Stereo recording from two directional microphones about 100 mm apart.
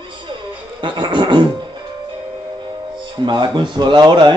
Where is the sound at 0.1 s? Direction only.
55° right (ahead or behind).